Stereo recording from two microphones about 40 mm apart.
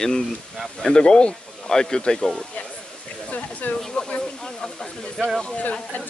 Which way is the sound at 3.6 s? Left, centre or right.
Left.